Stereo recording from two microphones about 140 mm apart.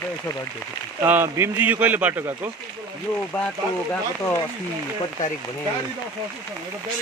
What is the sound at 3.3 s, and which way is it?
Speech, 10° left (ahead or behind).